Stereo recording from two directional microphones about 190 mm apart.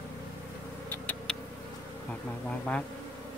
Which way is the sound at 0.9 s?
10° left (ahead or behind).